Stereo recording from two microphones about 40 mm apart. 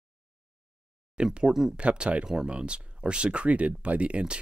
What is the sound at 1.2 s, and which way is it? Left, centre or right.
Speech, right.